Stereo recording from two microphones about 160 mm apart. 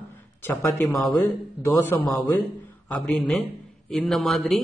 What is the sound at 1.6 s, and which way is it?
A man's voice, 15° left (ahead or behind).